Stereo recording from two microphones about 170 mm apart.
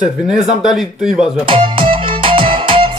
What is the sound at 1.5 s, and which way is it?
Music, 30° right (ahead or behind).